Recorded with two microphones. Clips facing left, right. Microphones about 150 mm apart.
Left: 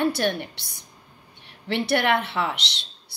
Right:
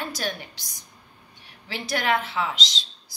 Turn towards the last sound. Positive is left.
turn(degrees=65)  # may be behind; listen again after turning